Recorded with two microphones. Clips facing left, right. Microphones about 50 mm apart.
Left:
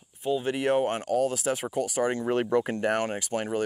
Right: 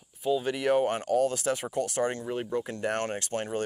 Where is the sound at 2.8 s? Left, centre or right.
Centre.